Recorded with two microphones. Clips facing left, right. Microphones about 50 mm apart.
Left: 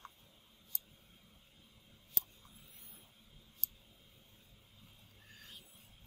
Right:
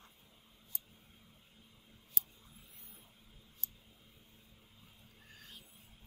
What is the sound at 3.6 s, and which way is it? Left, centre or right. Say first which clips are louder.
Tick: left 2 dB; left.